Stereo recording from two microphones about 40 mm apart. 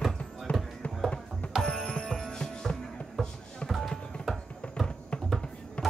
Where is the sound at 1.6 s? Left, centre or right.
Centre.